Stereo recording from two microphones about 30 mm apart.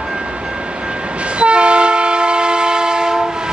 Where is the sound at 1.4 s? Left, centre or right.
Right.